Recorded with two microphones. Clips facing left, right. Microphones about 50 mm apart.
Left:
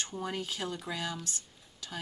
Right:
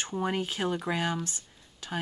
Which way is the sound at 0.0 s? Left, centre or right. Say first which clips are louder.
Right 6 dB; right.